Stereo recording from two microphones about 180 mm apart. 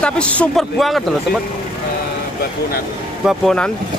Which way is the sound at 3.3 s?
Centre (ahead or behind).